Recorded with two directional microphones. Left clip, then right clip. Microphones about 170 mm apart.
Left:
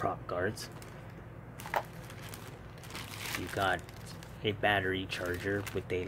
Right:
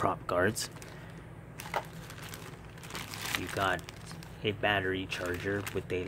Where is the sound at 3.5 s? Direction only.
5° right (ahead or behind).